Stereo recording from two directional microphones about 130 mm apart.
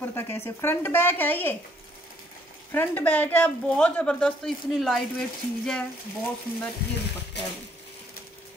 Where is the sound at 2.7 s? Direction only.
15° left (ahead or behind).